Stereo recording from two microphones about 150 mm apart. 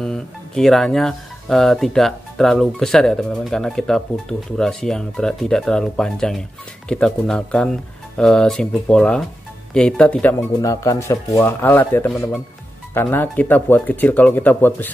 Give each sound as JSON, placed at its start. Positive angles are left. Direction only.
{"t": 0.0, "sound": "speech", "side_deg": 5}
{"t": 10.6, "sound": "speech", "side_deg": 20}